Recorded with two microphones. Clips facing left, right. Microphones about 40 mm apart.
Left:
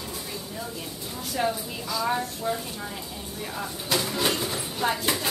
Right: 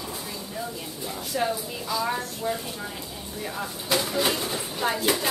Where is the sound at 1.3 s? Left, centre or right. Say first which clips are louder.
Even; centre.